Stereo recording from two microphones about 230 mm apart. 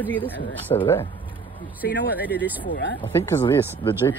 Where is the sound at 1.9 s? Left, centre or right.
Left.